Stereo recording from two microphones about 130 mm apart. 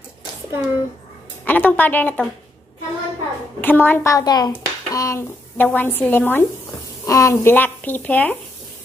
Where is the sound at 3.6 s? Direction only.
15° left (ahead or behind).